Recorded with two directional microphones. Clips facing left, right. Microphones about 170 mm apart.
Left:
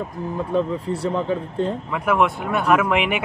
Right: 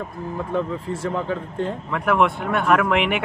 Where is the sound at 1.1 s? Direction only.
20° left (ahead or behind).